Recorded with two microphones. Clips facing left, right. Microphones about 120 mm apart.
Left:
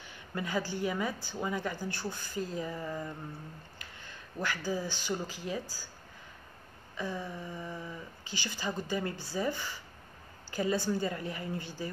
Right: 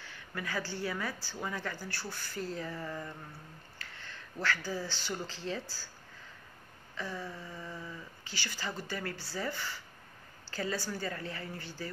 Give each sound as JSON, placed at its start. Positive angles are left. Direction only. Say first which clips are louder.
{"t": 0.0, "sound": "a woman's voice", "louder": "left 3 dB", "side_deg": 20}
{"t": 7.0, "sound": "a woman's voice", "louder": "left 3 dB", "side_deg": 15}